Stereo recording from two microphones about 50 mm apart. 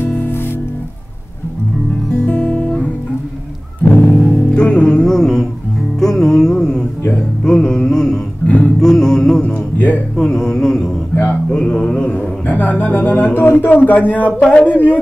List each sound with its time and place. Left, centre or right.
0.2 s music: left
2.1 s music: left
3.9 s music: left; by 8.2 s centre
8.5 s music: left
8.7 s music: centre
10.1 s mantra: centre
12.4 s speech: left